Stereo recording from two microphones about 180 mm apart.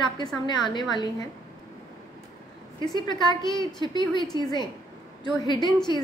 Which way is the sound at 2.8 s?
25° left (ahead or behind).